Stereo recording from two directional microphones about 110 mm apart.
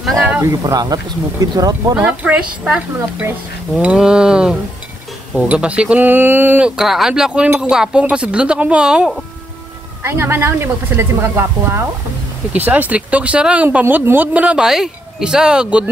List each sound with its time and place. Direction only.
0.4 s speech: 30° right (ahead or behind)
2.0 s speech: 10° right (ahead or behind)
6.8 s speech: 5° right (ahead or behind)
7.4 s speech: 15° right (ahead or behind)
10.0 s speech: 20° right (ahead or behind)